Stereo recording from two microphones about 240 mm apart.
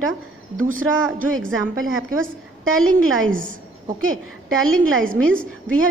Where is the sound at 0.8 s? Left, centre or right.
Right.